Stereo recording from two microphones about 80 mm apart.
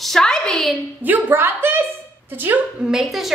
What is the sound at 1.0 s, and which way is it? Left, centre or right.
A woman's voice, right.